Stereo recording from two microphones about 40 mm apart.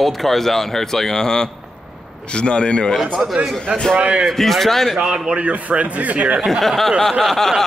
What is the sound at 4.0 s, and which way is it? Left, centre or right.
Speech, right.